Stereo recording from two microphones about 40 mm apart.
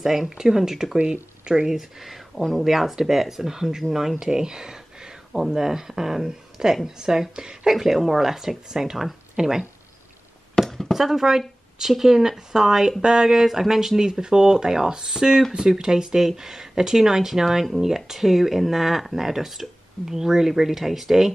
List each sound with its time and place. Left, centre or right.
0.0 s speech: centre
7.7 s speech: centre
10.6 s chop: centre
10.9 s speech: centre